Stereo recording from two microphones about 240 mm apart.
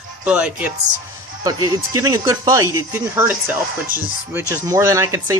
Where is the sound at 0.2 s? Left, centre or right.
Centre.